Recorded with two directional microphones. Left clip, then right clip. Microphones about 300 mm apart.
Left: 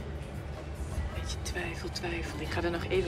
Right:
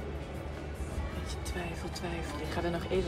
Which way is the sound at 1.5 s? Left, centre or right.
Centre.